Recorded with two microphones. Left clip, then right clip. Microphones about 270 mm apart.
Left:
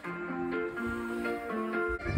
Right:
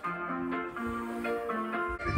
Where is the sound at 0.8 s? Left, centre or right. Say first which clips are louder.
Even; centre.